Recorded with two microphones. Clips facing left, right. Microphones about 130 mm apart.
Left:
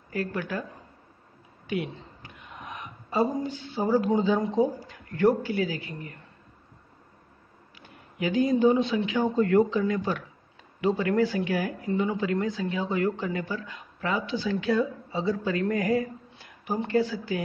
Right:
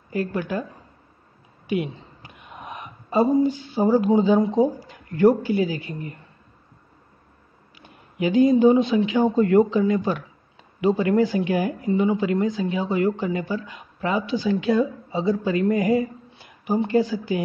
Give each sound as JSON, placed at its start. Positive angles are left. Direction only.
{"t": 0.1, "sound": "speech", "side_deg": -15}
{"t": 1.7, "sound": "a woman's voice", "side_deg": -15}
{"t": 8.2, "sound": "speech", "side_deg": -20}